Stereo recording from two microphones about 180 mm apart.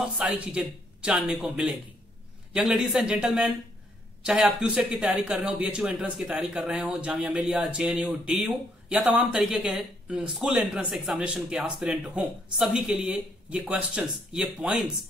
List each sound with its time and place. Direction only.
0.0 s speech: 5° right (ahead or behind)